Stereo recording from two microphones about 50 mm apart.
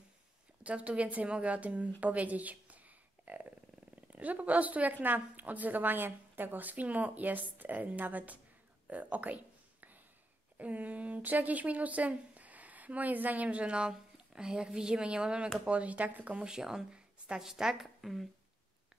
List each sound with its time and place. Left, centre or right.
0.7 s a woman's voice: right
8.8 s whispering: right
10.6 s a woman's voice: right
16.4 s speech: centre